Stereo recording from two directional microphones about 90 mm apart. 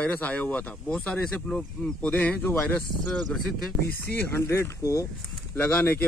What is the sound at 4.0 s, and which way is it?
Speech, 20° left (ahead or behind).